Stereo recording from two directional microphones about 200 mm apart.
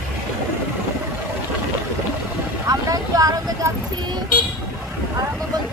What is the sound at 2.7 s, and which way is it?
Vehicle, 15° right (ahead or behind).